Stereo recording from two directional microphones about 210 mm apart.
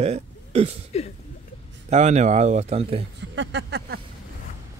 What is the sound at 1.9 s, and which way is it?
Speech, 35° right (ahead or behind).